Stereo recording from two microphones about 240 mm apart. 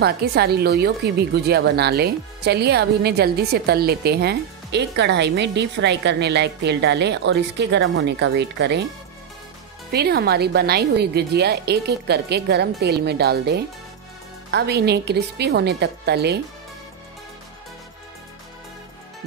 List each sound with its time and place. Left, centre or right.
0.0 s a woman's voice: right
9.8 s a woman's voice: right